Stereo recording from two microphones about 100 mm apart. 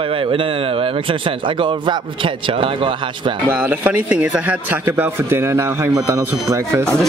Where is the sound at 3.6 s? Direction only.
20° right (ahead or behind).